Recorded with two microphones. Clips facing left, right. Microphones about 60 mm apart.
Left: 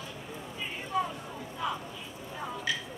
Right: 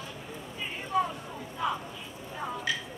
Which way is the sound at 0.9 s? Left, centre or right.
Right.